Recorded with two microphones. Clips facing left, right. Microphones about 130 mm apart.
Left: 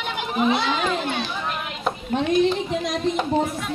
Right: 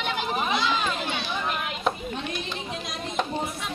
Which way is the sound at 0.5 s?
60° left (ahead or behind).